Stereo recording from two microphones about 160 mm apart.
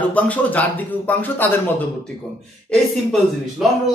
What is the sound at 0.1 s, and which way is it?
A man's voice, 10° left (ahead or behind).